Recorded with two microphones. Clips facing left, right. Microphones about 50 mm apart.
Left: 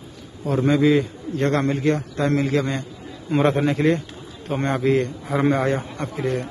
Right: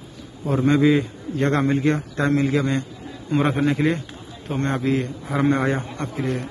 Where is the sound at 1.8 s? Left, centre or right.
Right.